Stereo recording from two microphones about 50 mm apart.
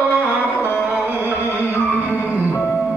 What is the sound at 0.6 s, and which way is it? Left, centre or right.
Chant, left.